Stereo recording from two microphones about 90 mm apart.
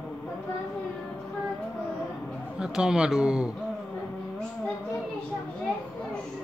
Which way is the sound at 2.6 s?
10° right (ahead or behind).